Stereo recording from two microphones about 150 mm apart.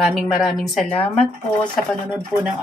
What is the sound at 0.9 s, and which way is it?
Speech, 40° left (ahead or behind).